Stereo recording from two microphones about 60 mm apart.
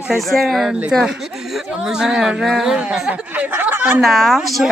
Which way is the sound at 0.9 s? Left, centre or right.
Centre.